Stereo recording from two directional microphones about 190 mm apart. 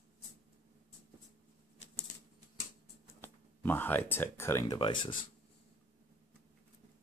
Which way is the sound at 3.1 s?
10° left (ahead or behind).